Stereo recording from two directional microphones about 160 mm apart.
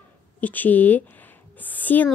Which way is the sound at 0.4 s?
10° left (ahead or behind).